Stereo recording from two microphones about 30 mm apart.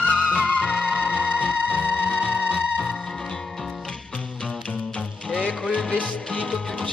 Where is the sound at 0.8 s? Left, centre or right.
Left.